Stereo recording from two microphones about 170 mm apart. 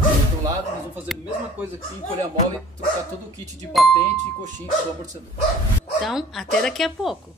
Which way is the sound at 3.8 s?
Centre (ahead or behind).